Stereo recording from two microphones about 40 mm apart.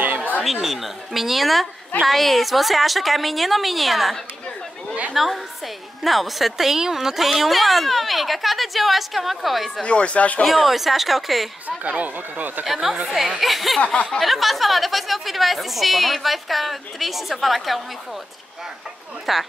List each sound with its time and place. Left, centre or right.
0.4 s speech: centre
9.8 s speech: left
10.4 s speech: centre
11.6 s speech: right
12.6 s speech: centre
13.7 s speech: left
14.2 s speech: centre
19.3 s speech: centre